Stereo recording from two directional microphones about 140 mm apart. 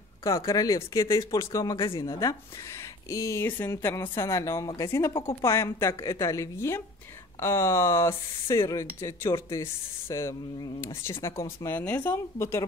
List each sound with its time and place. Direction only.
0.2 s speech: 25° left (ahead or behind)
1.8 s speech: 35° left (ahead or behind)
2.1 s speech: 20° left (ahead or behind)